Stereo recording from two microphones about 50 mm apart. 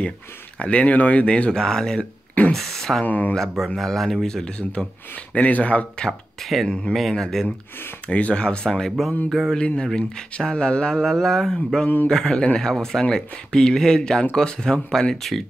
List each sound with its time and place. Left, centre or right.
0.6 s speech: left
2.0 s a sound: left
2.5 s speech: centre
3.1 s speech: left
3.3 s speech: centre; by 4.8 s left
5.1 s speech: left
6.4 s speech: centre
8.1 s speech: left; by 9.1 s centre
9.5 s speech: centre